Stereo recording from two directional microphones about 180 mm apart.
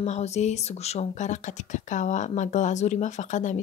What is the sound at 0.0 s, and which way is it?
Speech, 40° left (ahead or behind).